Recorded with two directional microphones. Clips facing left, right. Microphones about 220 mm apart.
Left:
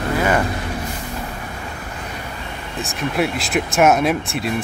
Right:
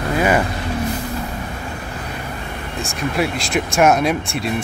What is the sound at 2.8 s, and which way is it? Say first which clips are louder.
Speech: even; centre (ahead or behind).